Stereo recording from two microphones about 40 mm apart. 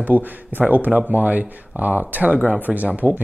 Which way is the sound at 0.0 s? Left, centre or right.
Right.